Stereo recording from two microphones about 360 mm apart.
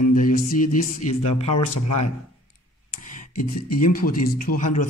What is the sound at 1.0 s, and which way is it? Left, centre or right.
Speech, centre.